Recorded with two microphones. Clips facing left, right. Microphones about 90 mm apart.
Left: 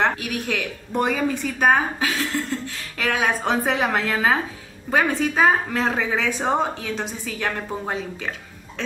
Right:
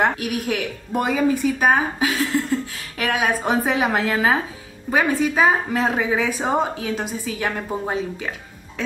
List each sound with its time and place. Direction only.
0.0 s a woman's voice: 10° right (ahead or behind)